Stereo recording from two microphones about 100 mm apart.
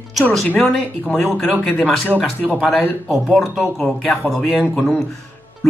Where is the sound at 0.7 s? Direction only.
5° left (ahead or behind).